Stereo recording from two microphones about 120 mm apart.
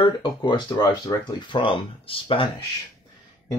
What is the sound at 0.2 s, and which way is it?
Speech, 35° left (ahead or behind).